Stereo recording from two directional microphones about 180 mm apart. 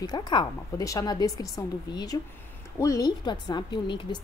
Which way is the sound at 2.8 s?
20° left (ahead or behind).